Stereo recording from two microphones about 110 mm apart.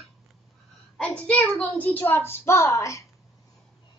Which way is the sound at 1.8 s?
15° left (ahead or behind).